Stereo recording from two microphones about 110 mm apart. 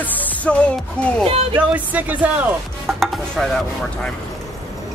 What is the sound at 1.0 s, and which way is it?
Speech, 10° left (ahead or behind).